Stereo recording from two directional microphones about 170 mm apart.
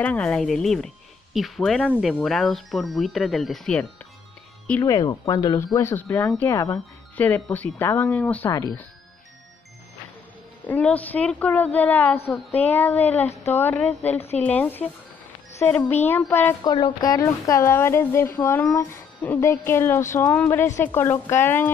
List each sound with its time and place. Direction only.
0.0 s speech: 5° left (ahead or behind)
4.6 s speech: 15° left (ahead or behind)
8.5 s speech: 20° left (ahead or behind)
10.8 s speech: 10° left (ahead or behind)
14.1 s a woman's voice: 40° left (ahead or behind)
14.4 s speech: 10° left (ahead or behind)
16.6 s speech: 25° left (ahead or behind)